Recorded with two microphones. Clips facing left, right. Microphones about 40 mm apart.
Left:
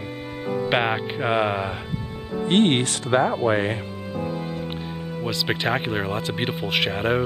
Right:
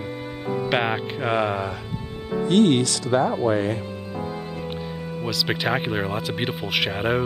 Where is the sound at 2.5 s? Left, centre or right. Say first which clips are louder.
Right 1 dB; left.